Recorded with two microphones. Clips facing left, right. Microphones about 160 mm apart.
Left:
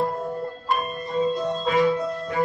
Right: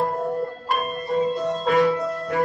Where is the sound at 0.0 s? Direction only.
55° right (ahead or behind).